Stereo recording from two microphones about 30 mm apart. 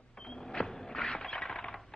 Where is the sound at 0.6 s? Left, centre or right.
Centre.